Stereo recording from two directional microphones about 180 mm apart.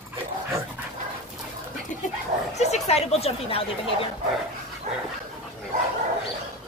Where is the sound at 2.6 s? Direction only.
35° left (ahead or behind).